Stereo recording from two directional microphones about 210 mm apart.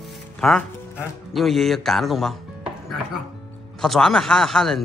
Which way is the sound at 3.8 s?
Centre (ahead or behind).